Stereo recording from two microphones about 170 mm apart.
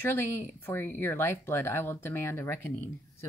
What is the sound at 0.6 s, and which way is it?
Speech, 10° left (ahead or behind).